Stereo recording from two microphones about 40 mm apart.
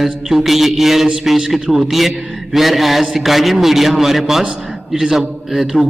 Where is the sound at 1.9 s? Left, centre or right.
Centre.